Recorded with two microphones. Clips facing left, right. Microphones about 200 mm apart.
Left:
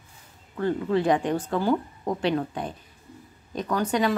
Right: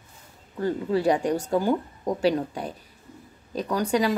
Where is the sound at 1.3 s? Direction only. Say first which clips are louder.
Right 1 dB; 10° right (ahead or behind).